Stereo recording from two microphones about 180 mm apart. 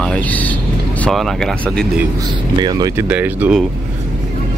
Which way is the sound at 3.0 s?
10° right (ahead or behind).